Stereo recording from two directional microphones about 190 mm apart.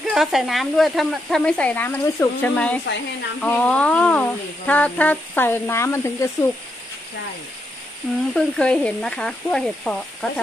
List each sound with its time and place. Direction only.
0.1 s speech: centre (ahead or behind); by 6.5 s 15° left (ahead or behind)
8.3 s speech: 5° left (ahead or behind)